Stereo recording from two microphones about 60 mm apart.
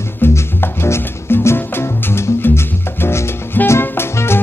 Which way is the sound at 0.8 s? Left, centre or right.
Left.